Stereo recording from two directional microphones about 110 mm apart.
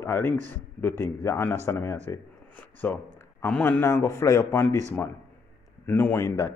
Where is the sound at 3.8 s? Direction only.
25° left (ahead or behind).